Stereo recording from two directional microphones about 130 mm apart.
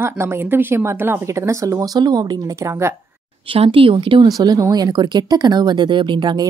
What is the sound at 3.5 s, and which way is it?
Speech, 45° right (ahead or behind).